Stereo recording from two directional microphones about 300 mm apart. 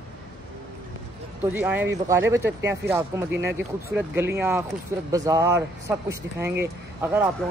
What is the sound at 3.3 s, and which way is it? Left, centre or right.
Speech, right.